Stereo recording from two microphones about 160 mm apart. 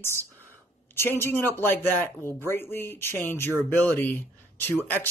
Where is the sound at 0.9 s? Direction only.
15° left (ahead or behind).